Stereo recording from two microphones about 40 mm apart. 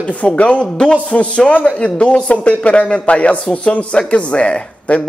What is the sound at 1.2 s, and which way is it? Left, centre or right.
Speech, left.